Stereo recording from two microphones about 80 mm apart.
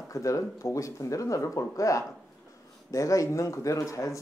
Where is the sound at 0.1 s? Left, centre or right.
Left.